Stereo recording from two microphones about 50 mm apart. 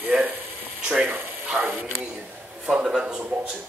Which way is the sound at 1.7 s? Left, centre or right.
Right.